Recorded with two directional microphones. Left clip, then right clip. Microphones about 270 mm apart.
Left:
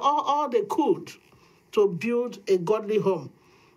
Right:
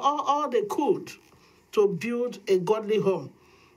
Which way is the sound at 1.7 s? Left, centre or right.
Left.